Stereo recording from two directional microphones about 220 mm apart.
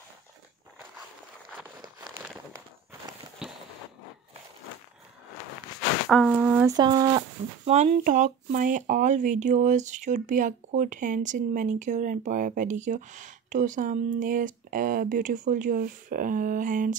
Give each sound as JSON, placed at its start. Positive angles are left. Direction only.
{"t": 3.4, "sound": "a sound", "side_deg": -5}
{"t": 6.0, "sound": "speech", "side_deg": 0}
{"t": 6.8, "sound": "speech", "side_deg": -20}